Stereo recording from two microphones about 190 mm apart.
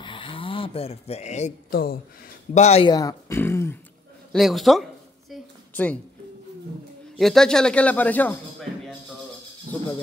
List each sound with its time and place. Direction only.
0.0 s a sound: 25° left (ahead or behind)
1.7 s speech: 50° left (ahead or behind)
2.5 s speech: 35° left (ahead or behind)
2.9 s speech: 20° left (ahead or behind)
4.3 s speech: centre (ahead or behind)
5.3 s a sound: 10° left (ahead or behind)
7.2 s speech: centre (ahead or behind)